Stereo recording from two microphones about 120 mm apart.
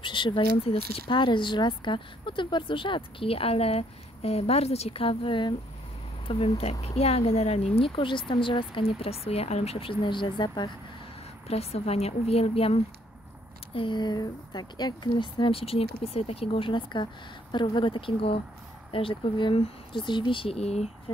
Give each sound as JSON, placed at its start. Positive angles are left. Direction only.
{"t": 0.0, "sound": "speech", "side_deg": 40}
{"t": 11.4, "sound": "a woman's voice", "side_deg": 60}
{"t": 13.7, "sound": "speech", "side_deg": 40}